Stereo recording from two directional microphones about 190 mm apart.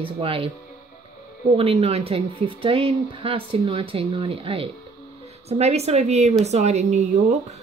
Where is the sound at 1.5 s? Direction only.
30° right (ahead or behind).